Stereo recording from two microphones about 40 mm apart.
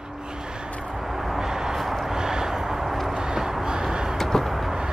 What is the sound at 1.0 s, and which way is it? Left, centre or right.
Vehicle, centre.